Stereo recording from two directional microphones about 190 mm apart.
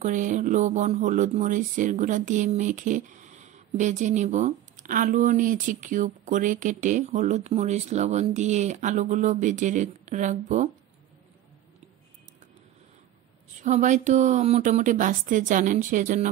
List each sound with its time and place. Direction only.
0.0 s speech: 40° right (ahead or behind)
13.6 s speech: 40° right (ahead or behind)